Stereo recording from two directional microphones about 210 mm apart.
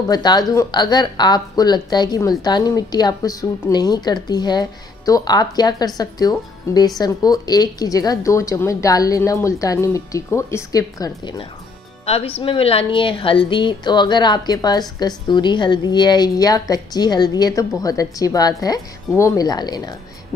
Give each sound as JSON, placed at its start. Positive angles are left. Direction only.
{"t": 0.1, "sound": "a woman's voice", "side_deg": 20}